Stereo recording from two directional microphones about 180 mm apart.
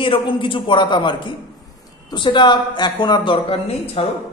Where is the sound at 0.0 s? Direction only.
30° left (ahead or behind).